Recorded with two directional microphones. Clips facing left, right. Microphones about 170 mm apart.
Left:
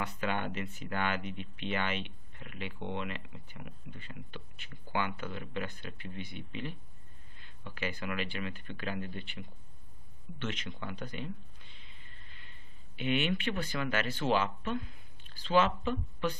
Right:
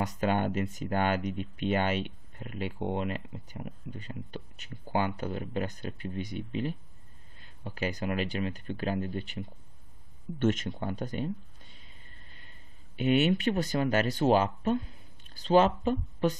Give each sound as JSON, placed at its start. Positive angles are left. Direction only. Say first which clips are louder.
{"t": 0.0, "sound": "speech", "louder": "right 6 dB", "side_deg": -40}